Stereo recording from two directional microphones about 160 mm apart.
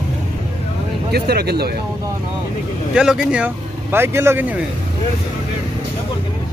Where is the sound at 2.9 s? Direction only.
5° right (ahead or behind).